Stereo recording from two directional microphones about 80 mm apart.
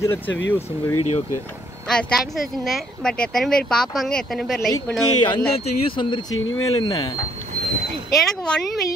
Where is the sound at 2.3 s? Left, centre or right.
Centre.